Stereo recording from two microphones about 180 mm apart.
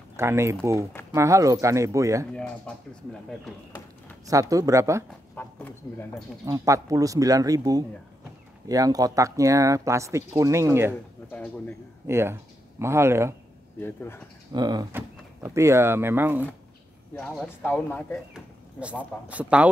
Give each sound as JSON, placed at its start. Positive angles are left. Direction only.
{"t": 0.1, "sound": "speech", "side_deg": -15}
{"t": 2.3, "sound": "speech", "side_deg": 5}
{"t": 4.3, "sound": "speech", "side_deg": -20}
{"t": 5.3, "sound": "a man's voice", "side_deg": 10}
{"t": 6.4, "sound": "speech", "side_deg": -15}
{"t": 12.1, "sound": "speech", "side_deg": -15}
{"t": 13.7, "sound": "speech", "side_deg": 10}
{"t": 14.5, "sound": "speech", "side_deg": -25}
{"t": 17.1, "sound": "speech", "side_deg": 0}
{"t": 18.3, "sound": "speech", "side_deg": -5}